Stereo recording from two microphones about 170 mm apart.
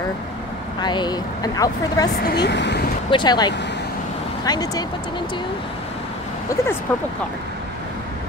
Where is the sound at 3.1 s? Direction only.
25° left (ahead or behind).